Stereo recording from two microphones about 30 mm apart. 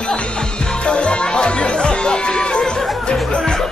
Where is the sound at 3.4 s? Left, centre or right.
Left.